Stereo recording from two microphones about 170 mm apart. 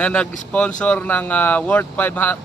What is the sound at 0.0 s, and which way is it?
Speech, 5° left (ahead or behind).